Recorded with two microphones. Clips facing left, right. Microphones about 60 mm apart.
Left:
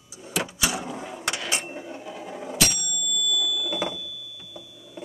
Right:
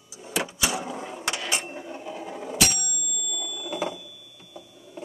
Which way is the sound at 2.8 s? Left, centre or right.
Right.